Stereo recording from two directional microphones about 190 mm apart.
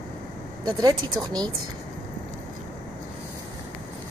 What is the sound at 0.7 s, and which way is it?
Speech, 20° right (ahead or behind).